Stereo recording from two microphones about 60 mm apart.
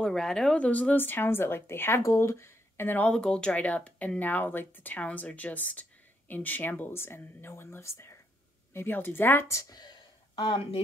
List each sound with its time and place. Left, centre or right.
0.0 s speech: centre
0.6 s speech: left
3.1 s speech: centre; by 8.2 s left
8.7 s speech: left
9.5 s speech: left